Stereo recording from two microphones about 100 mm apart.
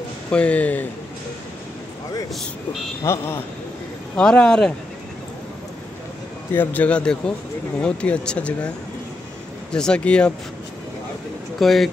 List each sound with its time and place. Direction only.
0.3 s speech: 10° left (ahead or behind)
3.0 s speech: 30° left (ahead or behind)
4.2 s speech: 10° left (ahead or behind)
6.5 s speech: 20° left (ahead or behind)
9.7 s speech: 10° left (ahead or behind)
11.6 s speech: centre (ahead or behind)